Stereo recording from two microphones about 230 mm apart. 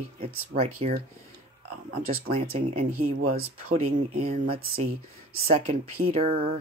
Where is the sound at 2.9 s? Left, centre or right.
Right.